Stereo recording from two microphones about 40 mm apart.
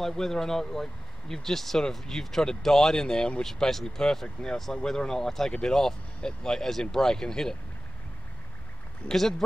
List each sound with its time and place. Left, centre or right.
0.0 s speech: centre